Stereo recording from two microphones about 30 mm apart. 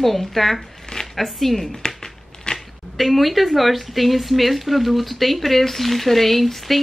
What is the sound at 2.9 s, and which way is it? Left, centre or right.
A woman's voice, centre.